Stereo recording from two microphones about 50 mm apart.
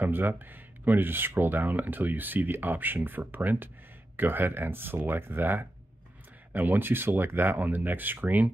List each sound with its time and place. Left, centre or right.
0.0 s speech: right